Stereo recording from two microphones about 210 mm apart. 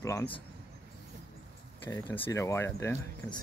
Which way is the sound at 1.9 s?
15° left (ahead or behind).